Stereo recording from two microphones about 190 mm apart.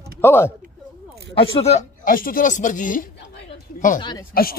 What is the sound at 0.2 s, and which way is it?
Speech, 10° left (ahead or behind).